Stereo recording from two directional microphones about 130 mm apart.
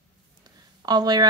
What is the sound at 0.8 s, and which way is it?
Speech, 30° right (ahead or behind).